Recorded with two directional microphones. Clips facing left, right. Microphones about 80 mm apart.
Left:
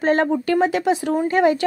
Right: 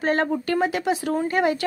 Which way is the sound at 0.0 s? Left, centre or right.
Left.